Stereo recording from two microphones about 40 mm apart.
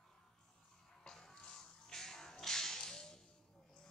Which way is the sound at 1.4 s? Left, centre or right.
Centre.